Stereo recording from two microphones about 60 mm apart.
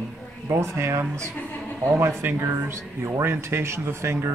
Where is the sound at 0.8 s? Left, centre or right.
Right.